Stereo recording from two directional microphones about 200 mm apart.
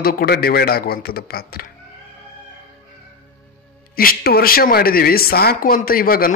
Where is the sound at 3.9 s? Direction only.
50° left (ahead or behind).